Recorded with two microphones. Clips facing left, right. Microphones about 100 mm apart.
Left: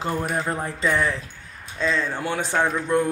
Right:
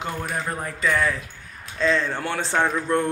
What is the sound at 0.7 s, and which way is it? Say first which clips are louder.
A man's voice: right 2 dB; 25° left (ahead or behind).